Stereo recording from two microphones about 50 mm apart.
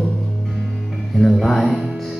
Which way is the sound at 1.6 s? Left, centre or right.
Centre.